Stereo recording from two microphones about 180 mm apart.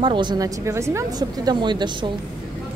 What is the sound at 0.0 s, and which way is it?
A woman's voice, 25° right (ahead or behind).